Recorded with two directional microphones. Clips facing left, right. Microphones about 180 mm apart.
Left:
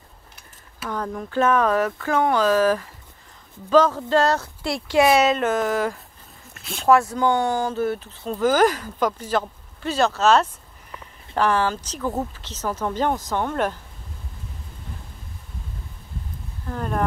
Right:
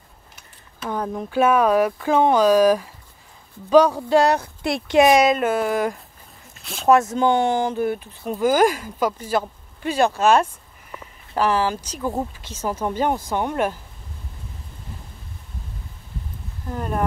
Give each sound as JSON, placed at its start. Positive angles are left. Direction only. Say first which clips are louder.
{"t": 0.8, "sound": "speech", "louder": "right 2 dB", "side_deg": -15}
{"t": 6.6, "sound": "speech", "louder": "left 1 dB", "side_deg": 0}
{"t": 6.9, "sound": "speech", "louder": "right 1 dB", "side_deg": -20}
{"t": 16.6, "sound": "speech", "louder": "right 1 dB", "side_deg": -10}